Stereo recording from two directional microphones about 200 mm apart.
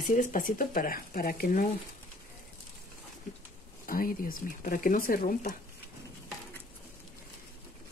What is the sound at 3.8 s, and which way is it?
Speech, 45° left (ahead or behind).